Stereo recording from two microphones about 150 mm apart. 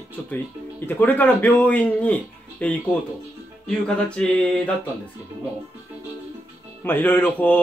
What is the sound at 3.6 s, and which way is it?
Music, 5° left (ahead or behind).